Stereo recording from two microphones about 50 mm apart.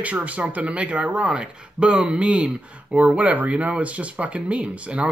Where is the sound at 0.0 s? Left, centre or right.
Right.